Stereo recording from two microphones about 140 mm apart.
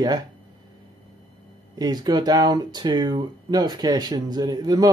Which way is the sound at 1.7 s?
30° right (ahead or behind).